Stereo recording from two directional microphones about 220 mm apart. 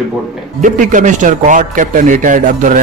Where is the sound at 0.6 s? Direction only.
35° right (ahead or behind).